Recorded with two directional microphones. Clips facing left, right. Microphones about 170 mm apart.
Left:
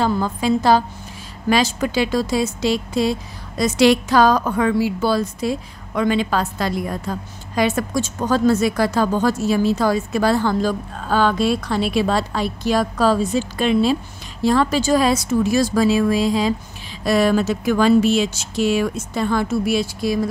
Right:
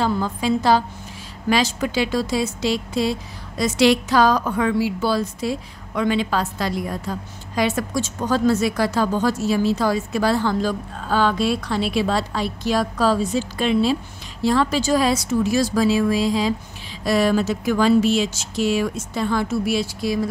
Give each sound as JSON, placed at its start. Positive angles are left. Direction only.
{"t": 0.0, "sound": "speech", "side_deg": 50}